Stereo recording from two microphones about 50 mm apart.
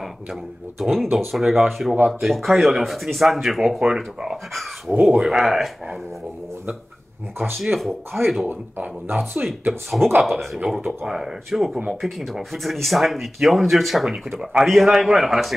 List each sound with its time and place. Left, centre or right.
0.0 s speech: centre
7.5 s speech: centre
8.5 s speech: right
9.2 s speech: centre